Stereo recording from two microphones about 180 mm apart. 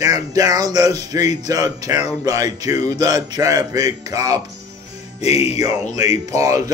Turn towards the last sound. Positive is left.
turn(degrees=-20)  # may be behind; listen again after turning